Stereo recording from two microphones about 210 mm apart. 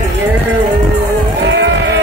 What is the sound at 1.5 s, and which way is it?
Livestock, 60° right (ahead or behind).